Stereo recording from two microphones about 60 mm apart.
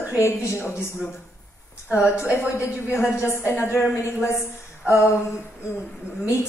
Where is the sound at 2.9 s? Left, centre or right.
Left.